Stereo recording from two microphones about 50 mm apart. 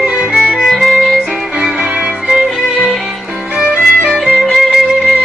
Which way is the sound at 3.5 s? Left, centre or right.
Right.